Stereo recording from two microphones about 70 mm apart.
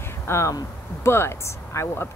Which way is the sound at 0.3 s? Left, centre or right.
Left.